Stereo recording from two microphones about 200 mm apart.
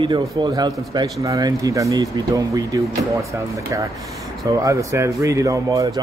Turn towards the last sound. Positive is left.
turn(degrees=-15)  # may be behind; listen again after turning